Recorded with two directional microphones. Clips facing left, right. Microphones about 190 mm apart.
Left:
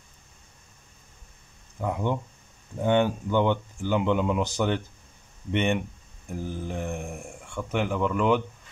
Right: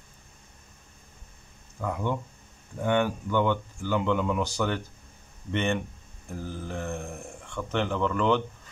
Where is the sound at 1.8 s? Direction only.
20° left (ahead or behind).